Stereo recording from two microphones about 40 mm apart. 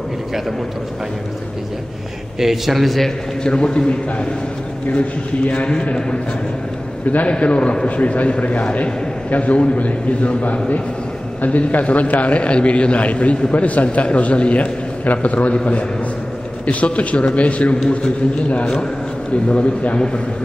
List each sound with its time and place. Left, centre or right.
2.4 s a man's voice: centre
3.4 s a man's voice: left
4.9 s a man's voice: left
7.2 s a man's voice: left
19.5 s a man's voice: left